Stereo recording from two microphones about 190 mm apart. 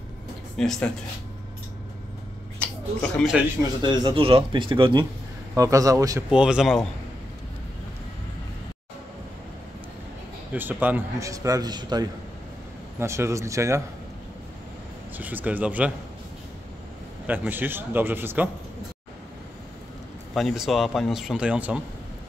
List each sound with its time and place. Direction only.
0.6 s speech: 5° left (ahead or behind)
2.6 s a sound: 5° left (ahead or behind)
3.8 s a man's voice: 25° right (ahead or behind)
6.3 s speech: 5° right (ahead or behind)
10.5 s a man's voice: 10° right (ahead or behind)
15.1 s a man's voice: 10° right (ahead or behind)
17.3 s a man's voice: 10° right (ahead or behind)
20.3 s speech: centre (ahead or behind)